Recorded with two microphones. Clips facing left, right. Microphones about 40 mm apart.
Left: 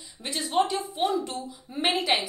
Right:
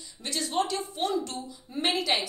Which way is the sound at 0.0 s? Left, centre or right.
Centre.